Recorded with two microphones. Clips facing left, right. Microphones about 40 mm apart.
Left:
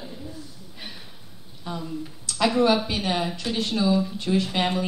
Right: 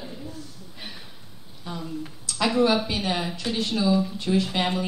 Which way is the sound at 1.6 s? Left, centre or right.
Centre.